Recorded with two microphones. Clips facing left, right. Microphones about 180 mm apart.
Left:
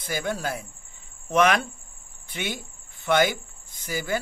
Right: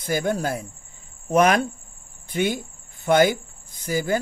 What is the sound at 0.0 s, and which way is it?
Speech, 45° right (ahead or behind).